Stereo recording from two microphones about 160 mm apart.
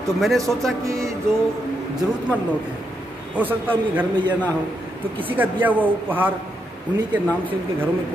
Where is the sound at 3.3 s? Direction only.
10° right (ahead or behind).